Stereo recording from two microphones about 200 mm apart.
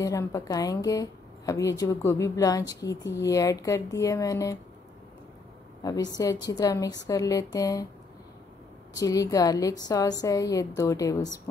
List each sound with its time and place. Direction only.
0.0 s a woman's voice: 15° left (ahead or behind)
5.8 s a woman's voice: 20° left (ahead or behind)
8.9 s a woman's voice: 15° left (ahead or behind)